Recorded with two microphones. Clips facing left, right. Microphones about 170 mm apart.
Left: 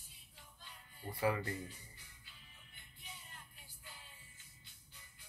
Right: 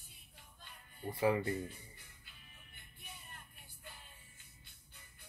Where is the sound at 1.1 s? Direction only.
25° right (ahead or behind).